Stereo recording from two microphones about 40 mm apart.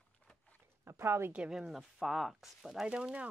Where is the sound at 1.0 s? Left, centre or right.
Right.